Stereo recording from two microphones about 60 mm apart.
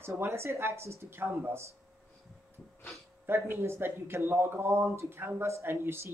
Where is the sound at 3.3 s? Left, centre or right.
Right.